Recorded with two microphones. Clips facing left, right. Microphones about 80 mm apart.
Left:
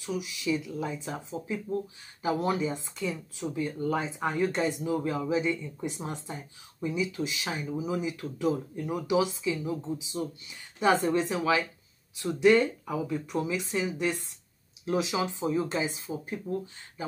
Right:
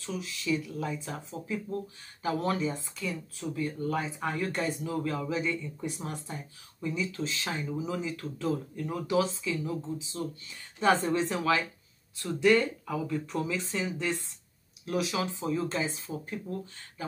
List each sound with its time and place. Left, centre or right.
0.0 s speech: centre